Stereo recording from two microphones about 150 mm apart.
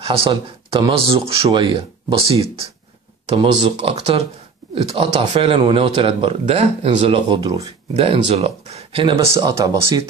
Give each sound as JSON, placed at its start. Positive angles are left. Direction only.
{"t": 0.0, "sound": "speech", "side_deg": -35}
{"t": 3.3, "sound": "speech", "side_deg": -40}
{"t": 7.9, "sound": "speech", "side_deg": -40}
{"t": 9.3, "sound": "speech", "side_deg": -25}